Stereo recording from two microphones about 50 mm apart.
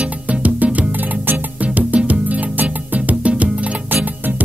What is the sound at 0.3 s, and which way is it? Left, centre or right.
Music, right.